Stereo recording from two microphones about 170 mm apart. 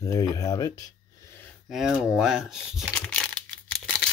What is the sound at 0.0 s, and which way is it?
Speech, 20° left (ahead or behind).